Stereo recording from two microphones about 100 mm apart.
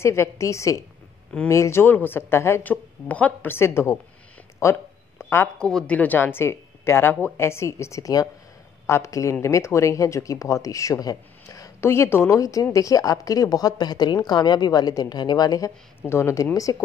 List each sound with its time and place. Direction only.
0.0 s a woman's voice: 25° left (ahead or behind)
5.2 s a sound: 25° left (ahead or behind)
5.6 s a woman's voice: 5° left (ahead or behind); by 11.7 s 35° left (ahead or behind)
11.8 s a woman's voice: 25° left (ahead or behind); by 15.7 s 40° left (ahead or behind)
16.0 s a woman's voice: 25° left (ahead or behind)